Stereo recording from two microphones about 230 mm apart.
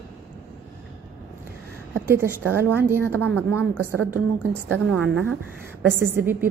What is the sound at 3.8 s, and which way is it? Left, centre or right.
Speech, right.